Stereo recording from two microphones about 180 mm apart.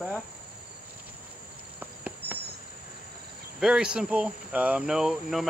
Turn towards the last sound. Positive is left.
turn(degrees=0)  # may be behind; listen again after turning